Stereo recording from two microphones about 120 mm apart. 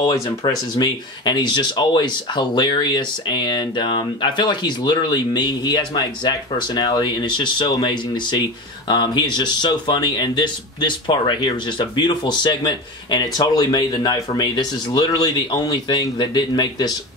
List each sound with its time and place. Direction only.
0.7 s speech: 35° left (ahead or behind)